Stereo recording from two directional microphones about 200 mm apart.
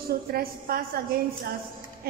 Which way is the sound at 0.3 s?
50° right (ahead or behind).